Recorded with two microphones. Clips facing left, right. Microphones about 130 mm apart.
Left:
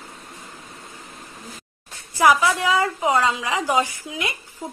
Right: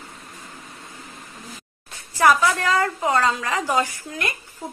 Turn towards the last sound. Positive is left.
turn(degrees=0)  # may be behind; listen again after turning